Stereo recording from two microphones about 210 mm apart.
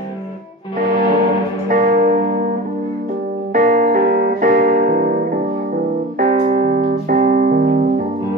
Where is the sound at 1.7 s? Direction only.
40° right (ahead or behind).